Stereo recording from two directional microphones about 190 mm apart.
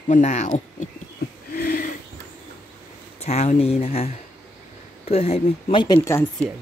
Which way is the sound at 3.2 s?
35° left (ahead or behind).